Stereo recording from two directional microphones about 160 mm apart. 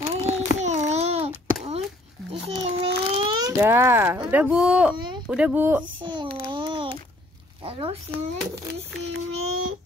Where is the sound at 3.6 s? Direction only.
15° right (ahead or behind).